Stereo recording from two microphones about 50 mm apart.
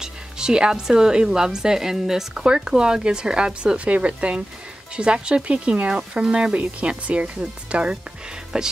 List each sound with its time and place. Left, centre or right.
0.0 s a woman's voice: centre